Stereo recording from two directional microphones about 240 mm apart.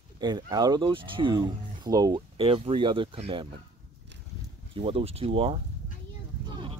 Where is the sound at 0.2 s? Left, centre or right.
Centre.